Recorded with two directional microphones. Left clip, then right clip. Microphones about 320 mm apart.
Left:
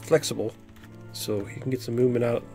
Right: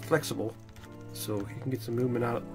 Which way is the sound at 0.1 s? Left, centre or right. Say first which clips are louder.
Left 6 dB; left.